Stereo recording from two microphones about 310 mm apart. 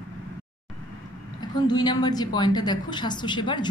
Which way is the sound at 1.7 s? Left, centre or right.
Centre.